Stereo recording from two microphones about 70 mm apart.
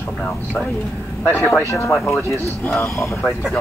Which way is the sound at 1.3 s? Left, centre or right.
Left.